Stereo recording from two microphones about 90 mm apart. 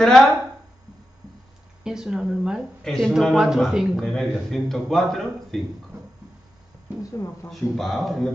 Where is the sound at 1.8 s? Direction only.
5° right (ahead or behind).